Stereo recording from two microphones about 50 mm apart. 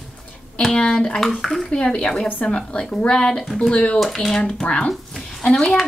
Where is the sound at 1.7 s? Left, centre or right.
Centre.